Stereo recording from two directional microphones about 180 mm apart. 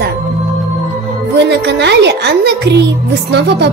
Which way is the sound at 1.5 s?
70° right (ahead or behind).